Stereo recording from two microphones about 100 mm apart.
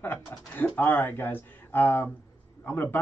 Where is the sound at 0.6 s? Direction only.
20° left (ahead or behind).